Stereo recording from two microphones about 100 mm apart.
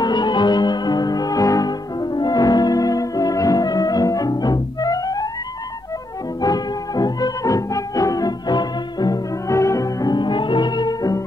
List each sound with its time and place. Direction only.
0.0 s music: 45° left (ahead or behind)
6.4 s music: 40° left (ahead or behind)
9.5 s music: 30° left (ahead or behind)
10.1 s music: 50° left (ahead or behind)